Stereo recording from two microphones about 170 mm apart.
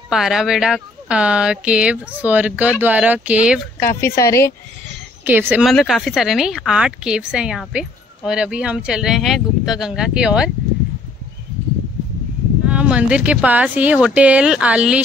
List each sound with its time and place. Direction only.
0.1 s a woman's voice: centre (ahead or behind)
3.9 s a woman's voice: 15° left (ahead or behind)
5.2 s speech: 10° right (ahead or behind)
5.7 s a woman's voice: centre (ahead or behind)
12.6 s speech: 5° right (ahead or behind)